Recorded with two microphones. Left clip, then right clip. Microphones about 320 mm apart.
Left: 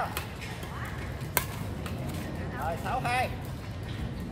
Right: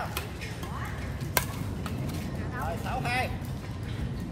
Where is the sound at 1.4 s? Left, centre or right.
Centre.